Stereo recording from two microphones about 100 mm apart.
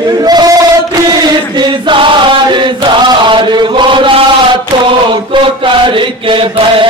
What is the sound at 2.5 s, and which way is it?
Chant, 50° right (ahead or behind).